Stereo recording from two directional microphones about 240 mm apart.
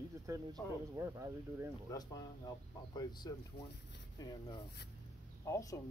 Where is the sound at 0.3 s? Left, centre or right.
Centre.